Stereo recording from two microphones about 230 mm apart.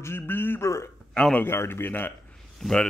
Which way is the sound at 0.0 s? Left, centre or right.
Centre.